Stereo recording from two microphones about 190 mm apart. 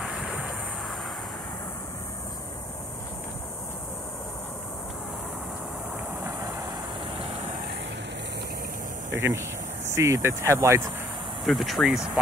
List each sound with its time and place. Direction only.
7.2 s vehicle: 30° right (ahead or behind)
9.1 s speech: 15° right (ahead or behind)
11.4 s speech: centre (ahead or behind)